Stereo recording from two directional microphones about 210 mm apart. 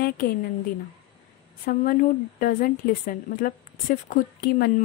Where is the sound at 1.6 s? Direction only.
40° left (ahead or behind).